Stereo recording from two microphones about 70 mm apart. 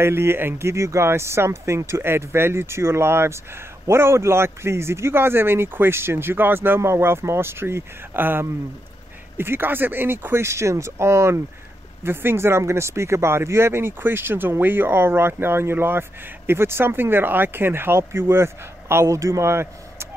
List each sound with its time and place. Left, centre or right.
0.0 s speech: right